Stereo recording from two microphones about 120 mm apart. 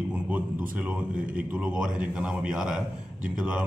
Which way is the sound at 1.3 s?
10° right (ahead or behind).